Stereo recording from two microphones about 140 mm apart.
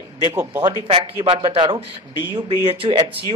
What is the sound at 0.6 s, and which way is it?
Speech, 30° right (ahead or behind).